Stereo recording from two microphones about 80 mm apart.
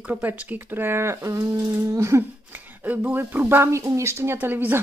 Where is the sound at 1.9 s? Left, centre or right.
Right.